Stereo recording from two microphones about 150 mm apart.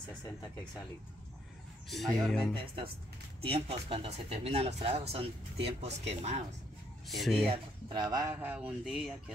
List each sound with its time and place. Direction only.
2.1 s speech: centre (ahead or behind)
2.5 s speech: 35° right (ahead or behind)
7.1 s speech: centre (ahead or behind)
7.4 s a man's voice: 30° right (ahead or behind)
8.4 s a sound: 10° right (ahead or behind)